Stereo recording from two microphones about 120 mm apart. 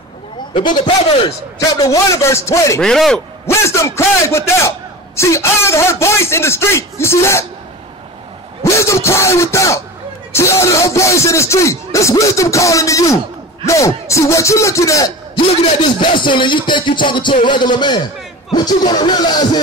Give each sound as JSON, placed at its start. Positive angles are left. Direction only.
{"t": 0.6, "sound": "a man's voice", "side_deg": 40}
{"t": 1.6, "sound": "a man's voice", "side_deg": 30}
{"t": 2.8, "sound": "speech", "side_deg": 5}
{"t": 3.4, "sound": "a man's voice", "side_deg": 25}
{"t": 8.6, "sound": "a man's voice", "side_deg": 25}
{"t": 16.2, "sound": "music", "side_deg": 45}